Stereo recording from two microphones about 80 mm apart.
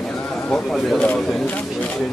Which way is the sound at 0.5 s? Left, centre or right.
Centre.